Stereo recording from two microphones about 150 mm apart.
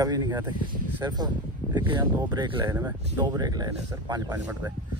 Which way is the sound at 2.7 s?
20° right (ahead or behind).